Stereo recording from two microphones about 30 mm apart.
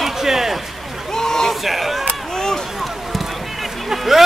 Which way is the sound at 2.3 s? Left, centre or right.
Centre.